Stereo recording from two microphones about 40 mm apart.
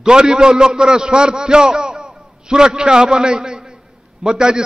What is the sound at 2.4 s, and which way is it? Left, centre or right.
A man's voice, centre.